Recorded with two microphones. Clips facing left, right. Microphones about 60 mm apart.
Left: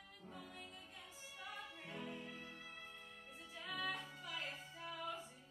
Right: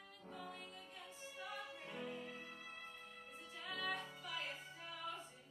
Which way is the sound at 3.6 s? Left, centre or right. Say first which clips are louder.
Even; centre.